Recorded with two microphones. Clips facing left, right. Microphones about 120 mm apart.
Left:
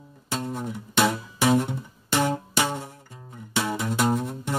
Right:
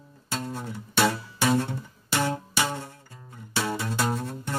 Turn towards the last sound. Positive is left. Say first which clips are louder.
# left 4 dB
turn(degrees=15)  # may be behind; listen again after turning